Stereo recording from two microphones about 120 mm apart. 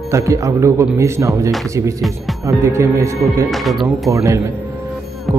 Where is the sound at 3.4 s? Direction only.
Centre (ahead or behind).